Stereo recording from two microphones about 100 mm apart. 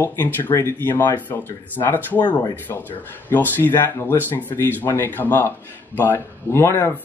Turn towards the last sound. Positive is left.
turn(degrees=25)  # may be behind; listen again after turning